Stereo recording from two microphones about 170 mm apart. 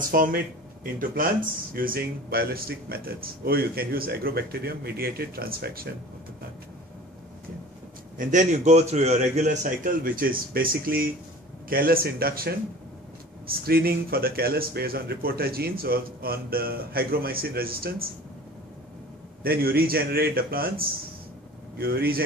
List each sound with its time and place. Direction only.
0.1 s speech: 60° right (ahead or behind)
8.2 s a man's voice: 45° right (ahead or behind)
19.4 s speech: 60° right (ahead or behind)